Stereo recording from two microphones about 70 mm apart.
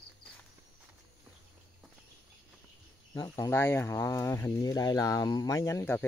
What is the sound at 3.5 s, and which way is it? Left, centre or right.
Speech, left.